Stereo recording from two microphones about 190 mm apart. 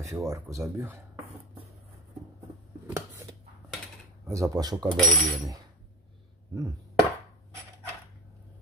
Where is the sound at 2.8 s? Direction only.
15° right (ahead or behind).